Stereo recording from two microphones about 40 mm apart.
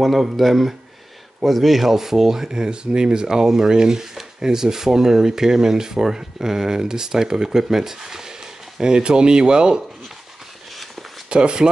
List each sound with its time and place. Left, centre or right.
0.0 s speech: centre; by 9.8 s right
11.2 s speech: right